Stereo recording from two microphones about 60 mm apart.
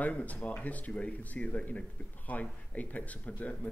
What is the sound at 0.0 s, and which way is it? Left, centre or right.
Speech, left.